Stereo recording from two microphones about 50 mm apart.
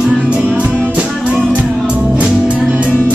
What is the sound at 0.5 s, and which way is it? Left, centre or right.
Music, right.